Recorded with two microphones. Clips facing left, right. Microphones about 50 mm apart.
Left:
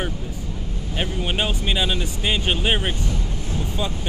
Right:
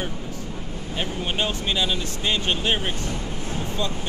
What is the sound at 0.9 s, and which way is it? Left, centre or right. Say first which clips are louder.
Speech: left 2 dB; centre.